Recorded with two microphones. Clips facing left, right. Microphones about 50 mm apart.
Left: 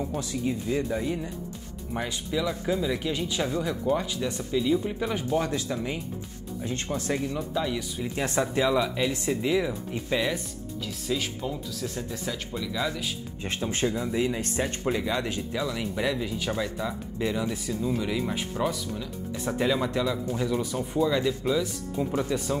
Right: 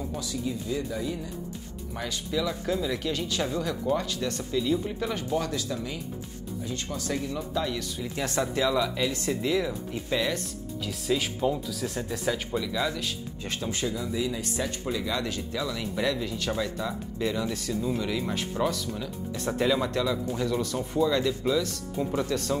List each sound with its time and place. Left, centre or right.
0.2 s speech: left
2.4 s speech: centre; by 7.3 s left
7.3 s speech: centre
8.0 s speech: left; by 13.1 s centre
13.4 s speech: left
15.6 s speech: centre